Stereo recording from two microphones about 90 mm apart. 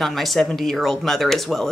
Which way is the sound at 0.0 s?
5° left (ahead or behind).